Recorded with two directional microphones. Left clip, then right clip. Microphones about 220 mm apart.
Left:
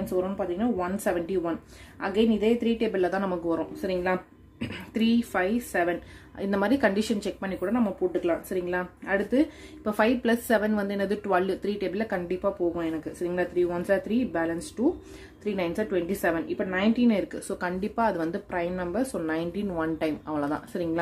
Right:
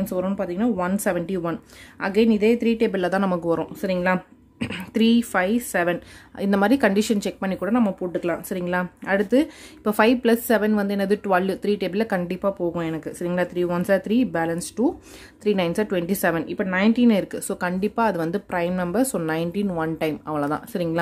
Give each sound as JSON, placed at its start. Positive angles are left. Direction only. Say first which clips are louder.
{"t": 0.2, "sound": "speech", "louder": "right 6 dB", "side_deg": -40}